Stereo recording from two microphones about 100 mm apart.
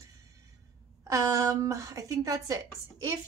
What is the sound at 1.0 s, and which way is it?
A woman's voice, 35° right (ahead or behind).